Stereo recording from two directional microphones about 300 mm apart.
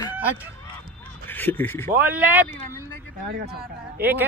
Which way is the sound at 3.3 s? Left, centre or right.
Right.